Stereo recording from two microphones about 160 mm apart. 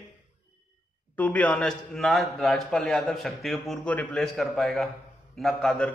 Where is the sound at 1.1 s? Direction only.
10° left (ahead or behind).